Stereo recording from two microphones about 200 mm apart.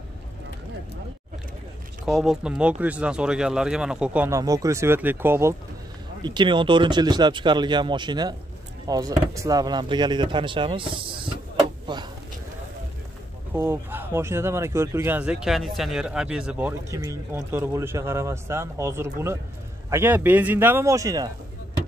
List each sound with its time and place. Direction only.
2.0 s speech: centre (ahead or behind)
6.2 s speech: 20° right (ahead or behind)
11.9 s a sound: 20° right (ahead or behind)
13.6 s speech: 10° right (ahead or behind)